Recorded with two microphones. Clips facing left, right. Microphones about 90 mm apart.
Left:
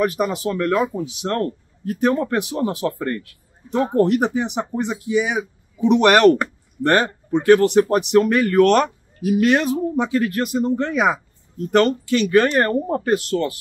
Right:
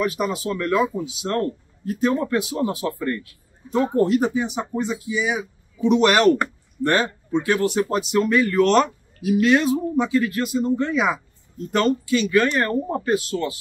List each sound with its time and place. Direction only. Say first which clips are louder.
0.0 s speech: left 3 dB; 50° left (ahead or behind)